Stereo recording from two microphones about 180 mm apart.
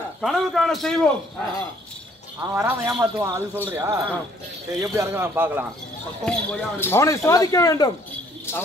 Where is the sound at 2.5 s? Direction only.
15° right (ahead or behind).